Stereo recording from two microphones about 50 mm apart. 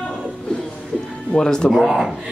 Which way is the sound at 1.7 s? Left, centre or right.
Centre.